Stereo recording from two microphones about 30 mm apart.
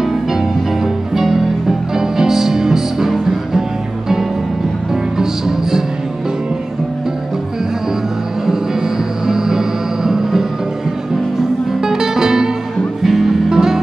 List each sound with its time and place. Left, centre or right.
1.1 s music: centre
5.2 s music: centre
9.2 s music: centre
11.8 s music: centre
13.0 s music: centre